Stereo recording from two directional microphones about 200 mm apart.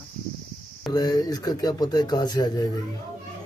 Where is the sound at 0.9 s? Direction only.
20° left (ahead or behind).